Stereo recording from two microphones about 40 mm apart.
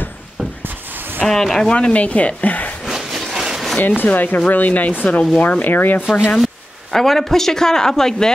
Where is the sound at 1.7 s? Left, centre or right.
Left.